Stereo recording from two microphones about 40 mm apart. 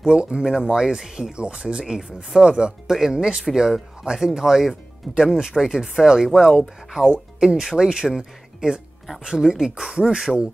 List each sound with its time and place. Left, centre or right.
0.0 s speech: right
1.3 s speech: right
2.9 s speech: centre